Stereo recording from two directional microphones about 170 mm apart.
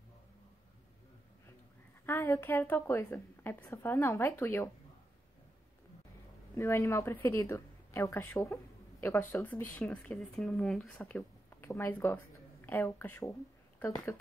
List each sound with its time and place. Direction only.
2.0 s speech: 15° left (ahead or behind)
6.5 s speech: 15° left (ahead or behind)